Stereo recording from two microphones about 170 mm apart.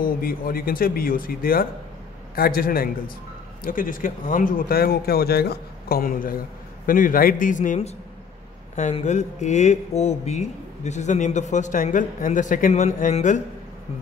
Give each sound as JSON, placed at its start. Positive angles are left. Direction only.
{"t": 0.0, "sound": "speech", "side_deg": 60}